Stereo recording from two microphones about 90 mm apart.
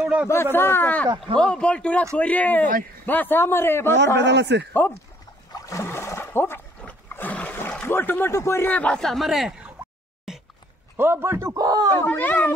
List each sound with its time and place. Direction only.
0.0 s speech: 15° right (ahead or behind)
0.3 s a man's voice: 25° left (ahead or behind)
5.5 s a sound: 35° left (ahead or behind)
6.8 s roar: 15° left (ahead or behind)
7.9 s a man's voice: 25° left (ahead or behind)
8.6 s speech: 15° left (ahead or behind)
9.0 s speech: centre (ahead or behind)
10.3 s a sound: 5° right (ahead or behind)
11.0 s speech: 25° right (ahead or behind); by 11.9 s 45° right (ahead or behind)
12.0 s a man's voice: 20° left (ahead or behind)